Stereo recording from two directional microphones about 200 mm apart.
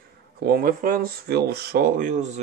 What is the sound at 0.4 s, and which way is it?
Speech, 50° right (ahead or behind).